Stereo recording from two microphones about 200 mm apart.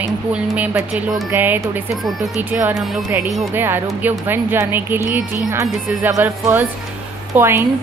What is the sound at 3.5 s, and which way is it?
Speech, 10° right (ahead or behind).